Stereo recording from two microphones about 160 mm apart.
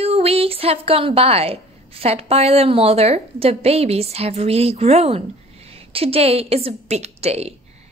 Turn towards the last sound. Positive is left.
turn(degrees=-40)  # may be behind; listen again after turning